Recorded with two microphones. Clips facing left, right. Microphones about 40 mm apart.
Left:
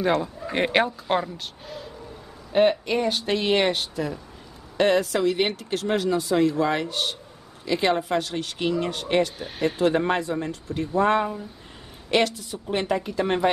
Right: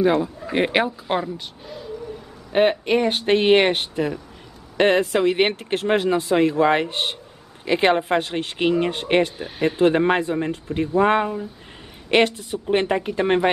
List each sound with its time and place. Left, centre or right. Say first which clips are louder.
0.0 s speech: right 4 dB; centre
2.8 s speech: right 4 dB; right
9.4 s speech: right 3 dB; centre
9.8 s speech: right 5 dB; right